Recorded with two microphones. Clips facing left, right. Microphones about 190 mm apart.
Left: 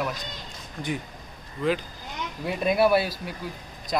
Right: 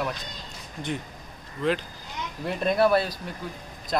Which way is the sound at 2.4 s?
5° left (ahead or behind).